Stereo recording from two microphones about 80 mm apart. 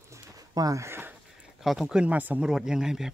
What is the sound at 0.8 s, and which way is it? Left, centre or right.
Speech, right.